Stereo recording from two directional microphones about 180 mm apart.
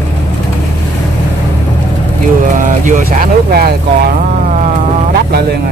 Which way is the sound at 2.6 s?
45° right (ahead or behind).